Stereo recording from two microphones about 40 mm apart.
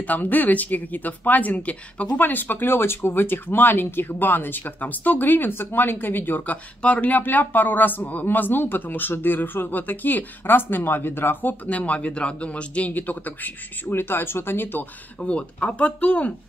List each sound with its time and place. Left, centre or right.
0.0 s speech: left
2.2 s speech: left
7.2 s speech: left
11.6 s a man's voice: left
13.9 s speech: left
15.1 s a man's voice: left